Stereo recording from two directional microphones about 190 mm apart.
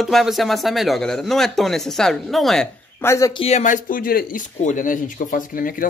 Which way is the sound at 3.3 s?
35° left (ahead or behind).